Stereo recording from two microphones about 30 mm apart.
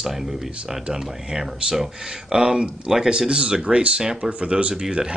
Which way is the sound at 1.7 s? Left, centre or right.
Centre.